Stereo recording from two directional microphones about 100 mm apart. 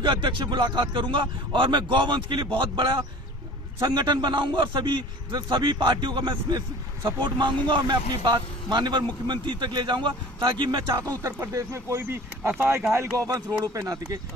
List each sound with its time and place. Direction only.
0.0 s a man's voice: 50° right (ahead or behind)
11.0 s speech: 30° right (ahead or behind)
13.8 s speech: 40° right (ahead or behind)